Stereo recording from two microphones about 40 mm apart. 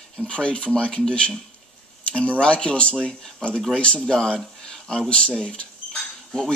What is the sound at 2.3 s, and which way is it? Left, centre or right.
Speech, left.